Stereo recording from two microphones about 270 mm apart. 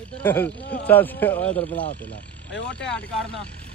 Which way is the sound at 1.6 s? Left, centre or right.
Left.